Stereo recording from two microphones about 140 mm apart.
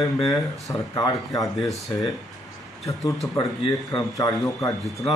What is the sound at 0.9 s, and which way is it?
Speech, 25° left (ahead or behind).